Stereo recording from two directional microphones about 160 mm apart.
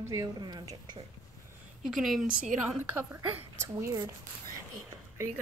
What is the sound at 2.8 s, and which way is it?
A woman's voice, 10° right (ahead or behind).